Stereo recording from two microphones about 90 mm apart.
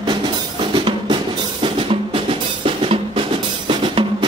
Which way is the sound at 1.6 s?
80° right.